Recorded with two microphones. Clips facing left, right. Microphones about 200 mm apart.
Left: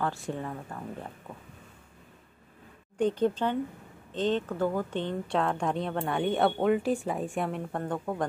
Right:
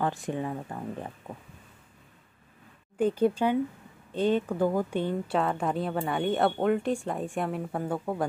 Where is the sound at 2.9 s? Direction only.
10° right (ahead or behind).